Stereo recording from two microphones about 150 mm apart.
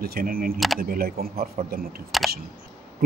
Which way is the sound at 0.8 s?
90° right.